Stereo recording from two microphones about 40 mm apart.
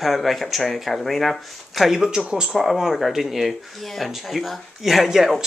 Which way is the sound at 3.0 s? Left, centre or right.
Centre.